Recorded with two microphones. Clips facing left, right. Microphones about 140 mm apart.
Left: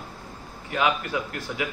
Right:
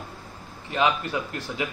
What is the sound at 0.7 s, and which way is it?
Speech, 25° right (ahead or behind).